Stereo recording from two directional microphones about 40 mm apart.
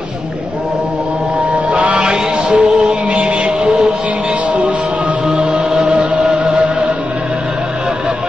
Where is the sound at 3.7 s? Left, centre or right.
Centre.